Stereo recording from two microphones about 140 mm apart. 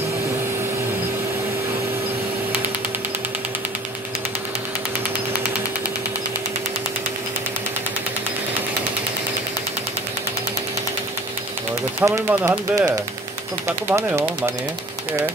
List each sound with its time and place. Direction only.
12.0 s speech: 20° right (ahead or behind)